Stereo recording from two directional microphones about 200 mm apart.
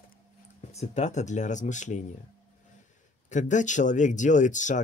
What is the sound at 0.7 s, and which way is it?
Speech, 35° left (ahead or behind).